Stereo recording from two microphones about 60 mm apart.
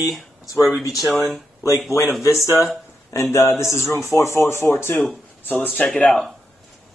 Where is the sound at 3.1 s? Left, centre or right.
Left.